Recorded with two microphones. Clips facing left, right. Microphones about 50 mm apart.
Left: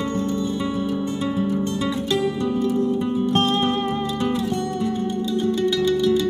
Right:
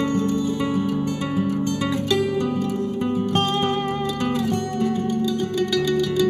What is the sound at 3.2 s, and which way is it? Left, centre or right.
Music, right.